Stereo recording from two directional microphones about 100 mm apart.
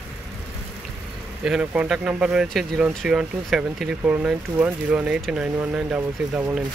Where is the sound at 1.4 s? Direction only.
5° right (ahead or behind).